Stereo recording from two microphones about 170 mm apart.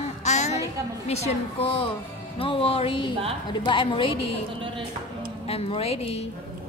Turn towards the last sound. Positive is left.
turn(degrees=35)  # may be behind; listen again after turning